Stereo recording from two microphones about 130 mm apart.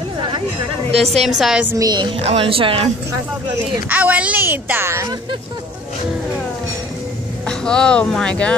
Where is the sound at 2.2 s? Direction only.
50° right (ahead or behind).